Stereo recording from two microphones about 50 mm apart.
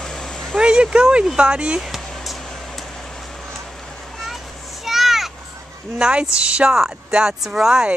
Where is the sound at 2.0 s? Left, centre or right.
Centre.